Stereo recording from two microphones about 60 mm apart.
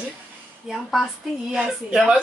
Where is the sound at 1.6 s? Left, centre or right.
Centre.